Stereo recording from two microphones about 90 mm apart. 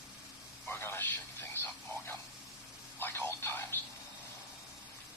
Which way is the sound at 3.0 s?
25° left (ahead or behind).